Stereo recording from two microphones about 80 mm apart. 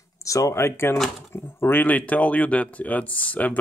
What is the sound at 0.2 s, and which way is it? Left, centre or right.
Speech, left.